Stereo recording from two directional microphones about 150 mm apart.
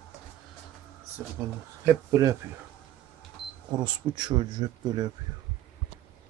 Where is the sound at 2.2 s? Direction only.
20° right (ahead or behind).